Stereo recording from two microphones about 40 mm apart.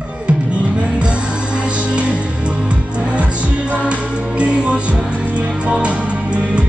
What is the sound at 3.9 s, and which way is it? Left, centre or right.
Music, right.